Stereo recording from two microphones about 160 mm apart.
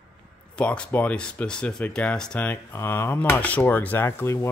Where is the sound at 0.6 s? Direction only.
10° left (ahead or behind).